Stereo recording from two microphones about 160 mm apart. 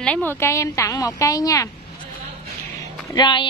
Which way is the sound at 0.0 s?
10° left (ahead or behind).